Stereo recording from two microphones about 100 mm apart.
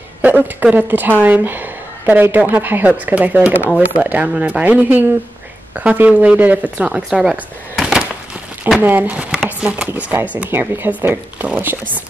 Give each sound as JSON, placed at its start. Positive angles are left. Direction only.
{"t": 0.2, "sound": "speech", "side_deg": -20}
{"t": 7.7, "sound": "a sound", "side_deg": -5}
{"t": 8.6, "sound": "speech", "side_deg": -15}